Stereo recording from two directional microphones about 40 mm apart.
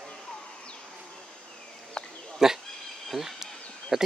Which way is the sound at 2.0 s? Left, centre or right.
Left.